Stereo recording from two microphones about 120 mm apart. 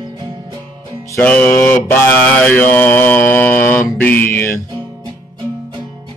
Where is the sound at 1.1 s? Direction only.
15° left (ahead or behind).